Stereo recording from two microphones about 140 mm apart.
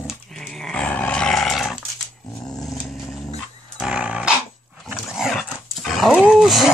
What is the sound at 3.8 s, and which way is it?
Dog, 5° right (ahead or behind).